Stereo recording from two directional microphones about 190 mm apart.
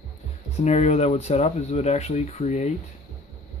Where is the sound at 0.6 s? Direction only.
35° left (ahead or behind).